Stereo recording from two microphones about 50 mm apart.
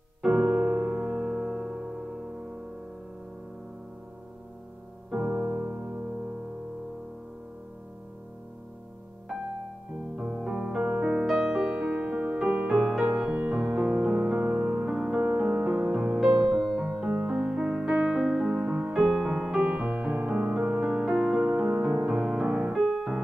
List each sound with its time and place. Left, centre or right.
0.2 s music: centre
1.1 s music: centre
5.1 s music: right
10.4 s music: centre
11.2 s music: centre
11.7 s music: right
18.9 s music: centre
22.8 s music: centre